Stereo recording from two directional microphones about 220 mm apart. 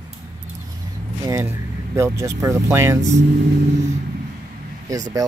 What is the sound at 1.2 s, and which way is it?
Speech, 10° right (ahead or behind).